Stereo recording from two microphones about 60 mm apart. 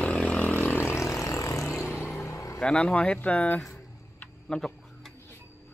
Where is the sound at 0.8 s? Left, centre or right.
Left.